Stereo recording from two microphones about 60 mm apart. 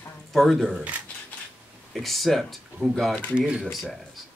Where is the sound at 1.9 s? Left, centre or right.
Centre.